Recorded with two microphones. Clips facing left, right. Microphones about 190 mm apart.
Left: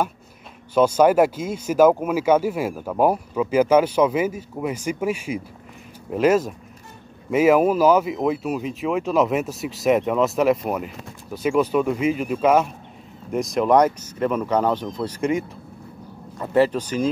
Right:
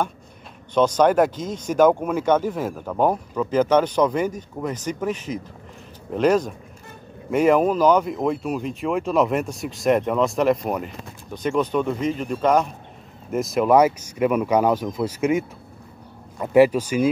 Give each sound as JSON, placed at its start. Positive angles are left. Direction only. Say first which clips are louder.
{"t": 0.7, "sound": "speech", "louder": "left 1 dB", "side_deg": 5}